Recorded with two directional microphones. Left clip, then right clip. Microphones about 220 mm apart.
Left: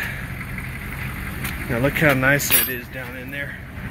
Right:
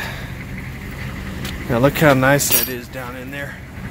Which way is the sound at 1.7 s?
15° right (ahead or behind).